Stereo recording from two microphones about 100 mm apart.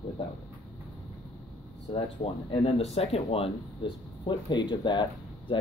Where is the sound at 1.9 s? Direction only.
70° left (ahead or behind).